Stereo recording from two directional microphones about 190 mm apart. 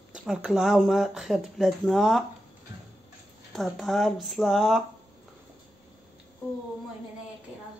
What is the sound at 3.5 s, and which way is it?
Speech, centre (ahead or behind).